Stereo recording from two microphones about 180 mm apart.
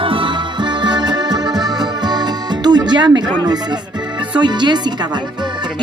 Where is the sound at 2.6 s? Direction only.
25° right (ahead or behind).